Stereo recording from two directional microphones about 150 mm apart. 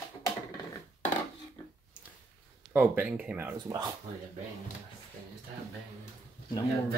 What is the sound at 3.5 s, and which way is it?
Speech, 30° right (ahead or behind).